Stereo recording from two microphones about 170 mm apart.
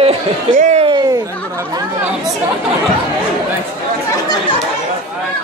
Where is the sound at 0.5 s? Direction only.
45° right (ahead or behind).